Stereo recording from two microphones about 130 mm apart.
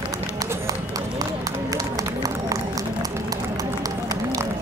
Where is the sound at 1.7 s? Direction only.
25° right (ahead or behind).